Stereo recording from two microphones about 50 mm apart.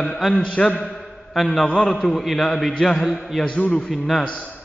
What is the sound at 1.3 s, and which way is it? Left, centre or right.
A man's voice, centre.